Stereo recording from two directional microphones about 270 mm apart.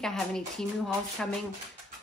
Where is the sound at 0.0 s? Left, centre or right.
Centre.